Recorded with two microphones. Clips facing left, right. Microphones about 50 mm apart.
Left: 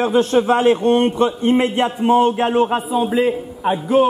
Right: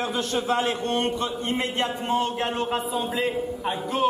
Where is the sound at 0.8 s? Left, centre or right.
Left.